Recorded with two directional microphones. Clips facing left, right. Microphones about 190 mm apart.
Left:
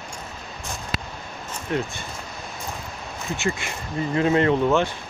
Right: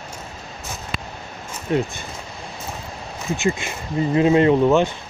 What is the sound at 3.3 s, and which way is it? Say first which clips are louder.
Speech: right 5 dB; 15° right (ahead or behind).